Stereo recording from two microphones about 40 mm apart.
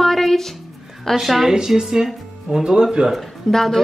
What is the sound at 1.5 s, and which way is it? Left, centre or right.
Speech, centre.